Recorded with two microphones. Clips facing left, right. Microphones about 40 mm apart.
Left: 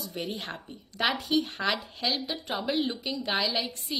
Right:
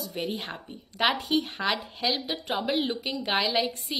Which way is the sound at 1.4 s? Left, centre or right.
Right.